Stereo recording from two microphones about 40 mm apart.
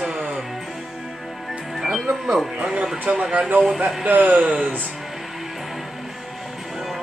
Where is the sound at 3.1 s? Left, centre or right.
Right.